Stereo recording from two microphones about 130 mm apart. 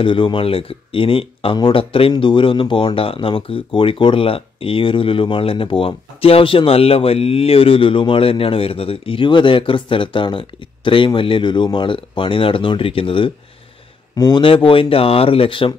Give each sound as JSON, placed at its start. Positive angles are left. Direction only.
{"t": 0.0, "sound": "speech", "side_deg": 40}
{"t": 14.1, "sound": "speech", "side_deg": 30}